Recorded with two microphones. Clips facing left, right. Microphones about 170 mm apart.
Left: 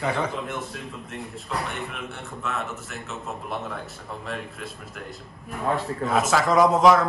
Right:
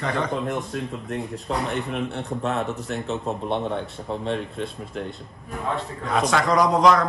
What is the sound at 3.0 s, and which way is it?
Speech, 30° right (ahead or behind).